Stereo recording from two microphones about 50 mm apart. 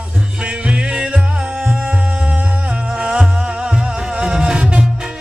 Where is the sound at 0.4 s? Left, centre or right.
Right.